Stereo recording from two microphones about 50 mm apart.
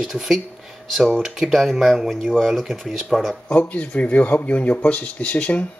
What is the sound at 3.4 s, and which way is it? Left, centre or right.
Speech, left.